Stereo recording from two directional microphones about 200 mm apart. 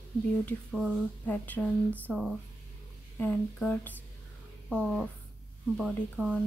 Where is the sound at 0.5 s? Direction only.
5° left (ahead or behind).